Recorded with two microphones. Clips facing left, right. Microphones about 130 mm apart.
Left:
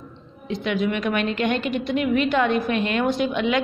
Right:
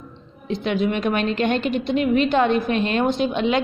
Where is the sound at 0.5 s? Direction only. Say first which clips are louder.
Right 2 dB; 30° right (ahead or behind).